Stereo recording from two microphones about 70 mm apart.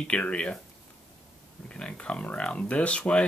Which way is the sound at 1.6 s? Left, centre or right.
Centre.